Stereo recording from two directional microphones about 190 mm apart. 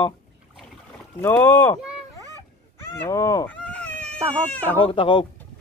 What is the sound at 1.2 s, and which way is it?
Speech, 15° left (ahead or behind).